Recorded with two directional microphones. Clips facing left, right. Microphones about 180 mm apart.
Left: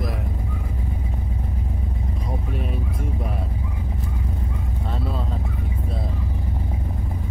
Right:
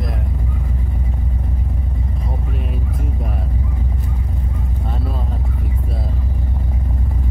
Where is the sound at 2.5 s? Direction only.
Centre (ahead or behind).